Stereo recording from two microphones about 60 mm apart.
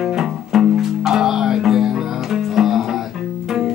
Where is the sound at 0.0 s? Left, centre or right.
Centre.